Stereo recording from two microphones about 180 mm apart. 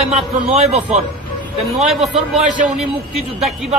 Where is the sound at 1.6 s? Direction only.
Centre (ahead or behind).